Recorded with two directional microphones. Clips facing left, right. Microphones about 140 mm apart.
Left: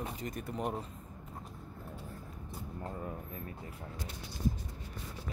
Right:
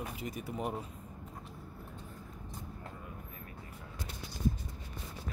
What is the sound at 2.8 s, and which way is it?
Vehicle, 40° left (ahead or behind).